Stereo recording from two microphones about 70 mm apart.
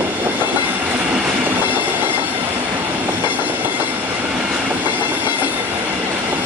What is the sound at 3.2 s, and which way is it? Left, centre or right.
Train, right.